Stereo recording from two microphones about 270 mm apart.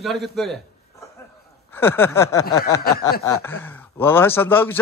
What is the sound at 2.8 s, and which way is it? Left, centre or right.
Speech, left.